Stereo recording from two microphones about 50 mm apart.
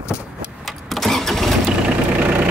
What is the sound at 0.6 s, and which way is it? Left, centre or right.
Vehicle, centre.